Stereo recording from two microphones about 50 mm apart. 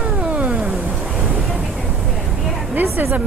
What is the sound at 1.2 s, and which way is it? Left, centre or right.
Waves, centre.